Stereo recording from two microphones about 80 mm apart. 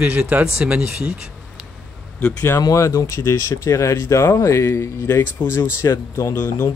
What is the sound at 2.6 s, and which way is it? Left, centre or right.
Speech, left.